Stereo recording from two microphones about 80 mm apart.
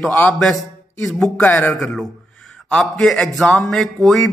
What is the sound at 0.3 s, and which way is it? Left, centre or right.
Speech, centre.